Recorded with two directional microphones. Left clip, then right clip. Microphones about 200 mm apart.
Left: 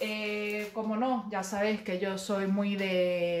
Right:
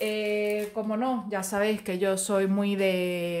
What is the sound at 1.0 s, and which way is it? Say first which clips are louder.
Speech: right 2 dB; 50° right (ahead or behind).